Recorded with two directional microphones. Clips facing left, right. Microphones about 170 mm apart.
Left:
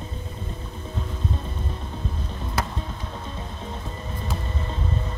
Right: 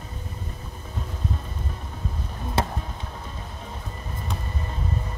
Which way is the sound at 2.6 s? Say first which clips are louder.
Right 3 dB; 30° right (ahead or behind).